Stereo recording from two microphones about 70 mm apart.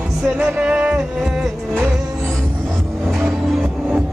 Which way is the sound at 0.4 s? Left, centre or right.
Centre.